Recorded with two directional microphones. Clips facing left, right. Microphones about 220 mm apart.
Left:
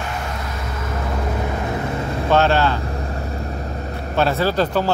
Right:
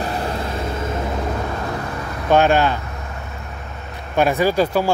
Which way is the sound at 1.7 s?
25° left (ahead or behind).